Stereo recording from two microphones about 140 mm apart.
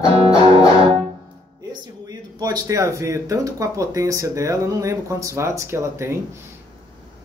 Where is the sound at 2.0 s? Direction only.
25° right (ahead or behind).